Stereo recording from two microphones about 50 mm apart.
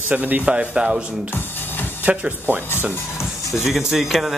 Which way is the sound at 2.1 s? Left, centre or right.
Right.